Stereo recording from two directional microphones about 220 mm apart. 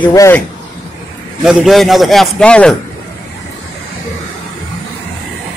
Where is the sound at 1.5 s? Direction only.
Centre (ahead or behind).